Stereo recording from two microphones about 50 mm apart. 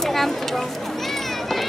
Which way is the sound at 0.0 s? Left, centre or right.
Centre.